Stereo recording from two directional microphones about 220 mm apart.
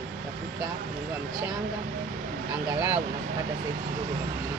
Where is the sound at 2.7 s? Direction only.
5° right (ahead or behind).